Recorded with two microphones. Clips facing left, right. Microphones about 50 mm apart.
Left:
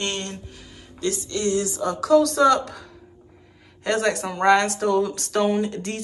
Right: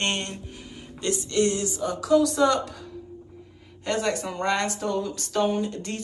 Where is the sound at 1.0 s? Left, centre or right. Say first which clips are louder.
Right 1 dB; right.